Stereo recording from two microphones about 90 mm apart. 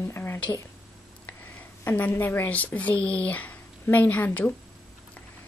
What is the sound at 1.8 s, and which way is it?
A woman's voice, 20° left (ahead or behind).